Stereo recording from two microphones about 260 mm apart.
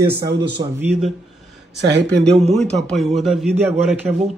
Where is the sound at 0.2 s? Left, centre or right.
Right.